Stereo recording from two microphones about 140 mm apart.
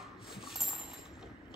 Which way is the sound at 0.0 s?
Centre (ahead or behind).